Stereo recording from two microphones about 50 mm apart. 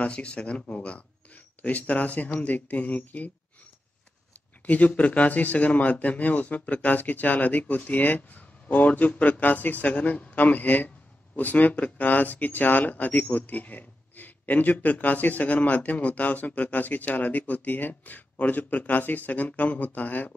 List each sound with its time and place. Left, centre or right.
0.0 s speech: left
4.6 s speech: left